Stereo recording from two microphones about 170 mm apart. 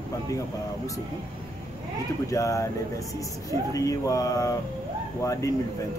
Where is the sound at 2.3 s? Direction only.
20° left (ahead or behind).